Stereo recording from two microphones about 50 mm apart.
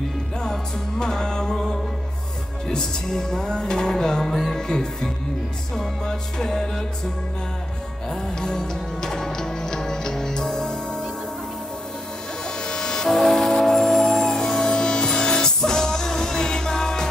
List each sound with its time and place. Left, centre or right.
0.4 s music: centre
8.1 s music: centre
12.6 s train: centre